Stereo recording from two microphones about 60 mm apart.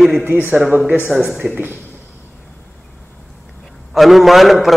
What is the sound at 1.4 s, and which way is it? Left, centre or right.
Speech, right.